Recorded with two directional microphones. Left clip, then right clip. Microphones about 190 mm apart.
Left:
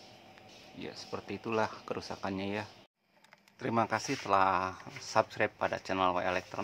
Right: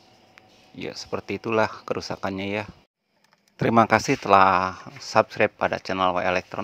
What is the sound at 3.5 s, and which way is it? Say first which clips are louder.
Speech: right 13 dB; 45° right (ahead or behind).